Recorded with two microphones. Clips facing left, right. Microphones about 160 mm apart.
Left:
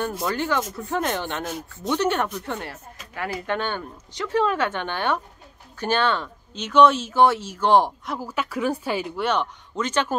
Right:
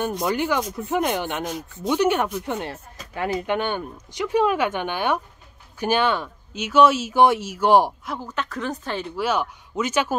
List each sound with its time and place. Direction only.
0.2 s speech: 15° right (ahead or behind)